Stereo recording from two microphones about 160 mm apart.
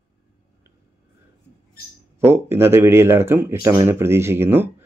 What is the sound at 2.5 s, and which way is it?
Speech, 15° right (ahead or behind).